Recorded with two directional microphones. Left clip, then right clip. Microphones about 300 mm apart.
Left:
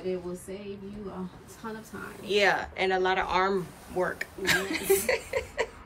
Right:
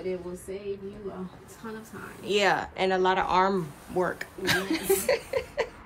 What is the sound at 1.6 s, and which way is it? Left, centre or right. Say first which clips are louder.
Speech: left 1 dB; centre.